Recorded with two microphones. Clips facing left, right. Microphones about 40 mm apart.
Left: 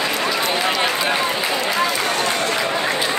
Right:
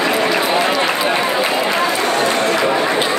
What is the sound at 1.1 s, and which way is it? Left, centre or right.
Run, right.